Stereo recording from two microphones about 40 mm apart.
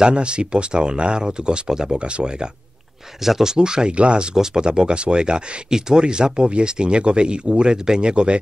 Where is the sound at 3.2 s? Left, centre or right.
Centre.